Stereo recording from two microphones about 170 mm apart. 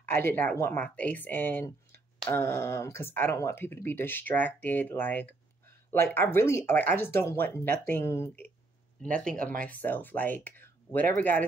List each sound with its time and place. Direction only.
0.1 s speech: 15° left (ahead or behind)
9.0 s speech: 5° left (ahead or behind)
9.3 s speech: 50° right (ahead or behind)
9.6 s speech: 10° left (ahead or behind)